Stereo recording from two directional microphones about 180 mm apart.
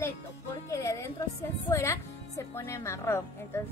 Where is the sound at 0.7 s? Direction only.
15° left (ahead or behind).